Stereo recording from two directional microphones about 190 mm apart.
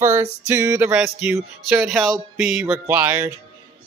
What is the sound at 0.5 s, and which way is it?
Speech, 15° right (ahead or behind).